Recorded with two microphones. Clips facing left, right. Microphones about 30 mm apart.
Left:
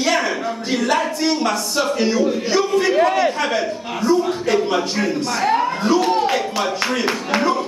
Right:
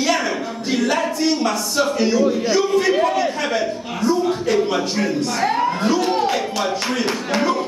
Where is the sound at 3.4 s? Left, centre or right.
Centre.